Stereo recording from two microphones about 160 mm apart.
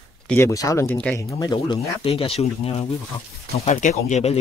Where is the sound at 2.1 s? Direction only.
40° left (ahead or behind).